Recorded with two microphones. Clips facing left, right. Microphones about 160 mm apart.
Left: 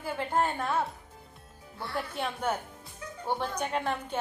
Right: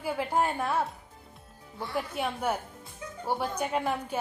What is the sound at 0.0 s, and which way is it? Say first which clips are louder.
A woman's voice: right 1 dB; 10° right (ahead or behind).